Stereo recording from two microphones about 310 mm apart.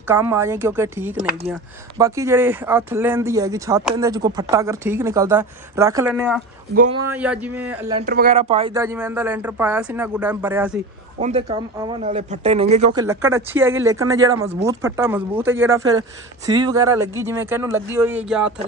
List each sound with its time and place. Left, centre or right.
0.1 s speech: centre
8.0 s speech: right; by 10.7 s centre
11.1 s speech: right
13.0 s speech: centre